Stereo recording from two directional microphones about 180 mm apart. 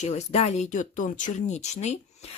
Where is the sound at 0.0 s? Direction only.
40° left (ahead or behind).